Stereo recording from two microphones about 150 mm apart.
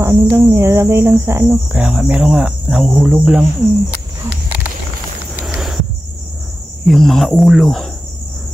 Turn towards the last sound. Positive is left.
turn(degrees=0)  # may be behind; listen again after turning